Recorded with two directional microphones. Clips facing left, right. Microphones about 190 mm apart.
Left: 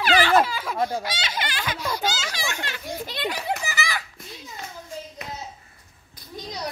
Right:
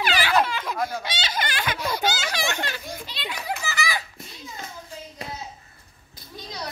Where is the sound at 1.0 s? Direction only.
25° right (ahead or behind).